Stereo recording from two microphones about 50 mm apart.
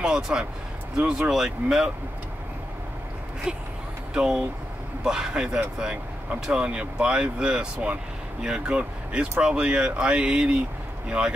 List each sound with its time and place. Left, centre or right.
0.0 s a man's voice: centre
3.5 s a man's voice: centre